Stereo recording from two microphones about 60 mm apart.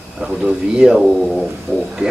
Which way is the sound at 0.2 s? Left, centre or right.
Centre.